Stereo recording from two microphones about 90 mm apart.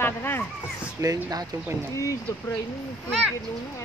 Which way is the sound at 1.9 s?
40° left (ahead or behind).